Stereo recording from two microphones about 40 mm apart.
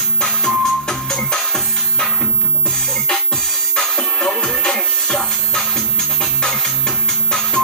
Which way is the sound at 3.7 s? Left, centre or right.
Centre.